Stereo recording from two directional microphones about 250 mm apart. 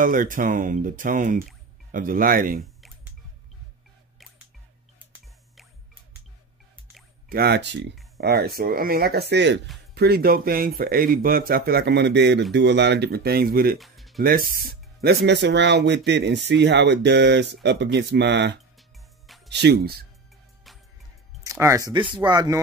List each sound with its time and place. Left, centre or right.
0.0 s speech: right
7.2 s speech: right
13.7 s music: centre
14.2 s speech: right
19.2 s music: centre
19.5 s speech: right
21.5 s speech: centre